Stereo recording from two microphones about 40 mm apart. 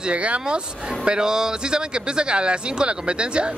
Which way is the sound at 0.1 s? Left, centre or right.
Right.